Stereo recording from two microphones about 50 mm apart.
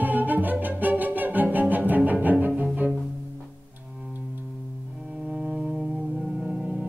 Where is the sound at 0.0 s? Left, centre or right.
Right.